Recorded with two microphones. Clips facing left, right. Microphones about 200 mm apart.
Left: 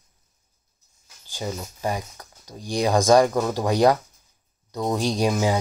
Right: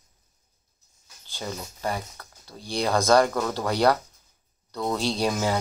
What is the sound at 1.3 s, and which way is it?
Speech, 15° left (ahead or behind).